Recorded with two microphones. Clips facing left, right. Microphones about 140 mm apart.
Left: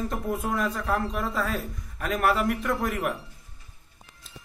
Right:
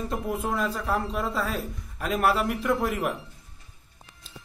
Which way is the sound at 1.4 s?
25° right (ahead or behind).